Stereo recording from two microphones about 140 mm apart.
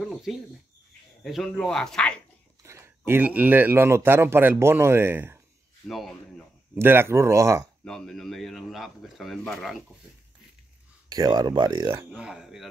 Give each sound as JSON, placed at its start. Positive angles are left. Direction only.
{"t": 0.1, "sound": "a sound", "side_deg": 0}
{"t": 1.2, "sound": "speech", "side_deg": 0}
{"t": 2.6, "sound": "a sound", "side_deg": -20}
{"t": 3.1, "sound": "a man's voice", "side_deg": -10}
{"t": 5.9, "sound": "speech", "side_deg": 0}
{"t": 6.7, "sound": "speech", "side_deg": -15}
{"t": 7.8, "sound": "speech", "side_deg": 5}
{"t": 11.1, "sound": "speech", "side_deg": -30}
{"t": 12.1, "sound": "speech", "side_deg": -5}